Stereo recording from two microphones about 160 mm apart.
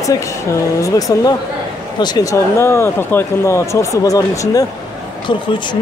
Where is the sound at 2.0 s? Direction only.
25° left (ahead or behind).